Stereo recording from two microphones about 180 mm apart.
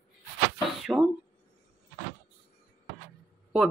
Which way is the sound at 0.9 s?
10° right (ahead or behind).